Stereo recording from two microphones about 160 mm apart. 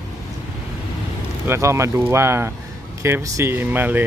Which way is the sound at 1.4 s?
15° right (ahead or behind).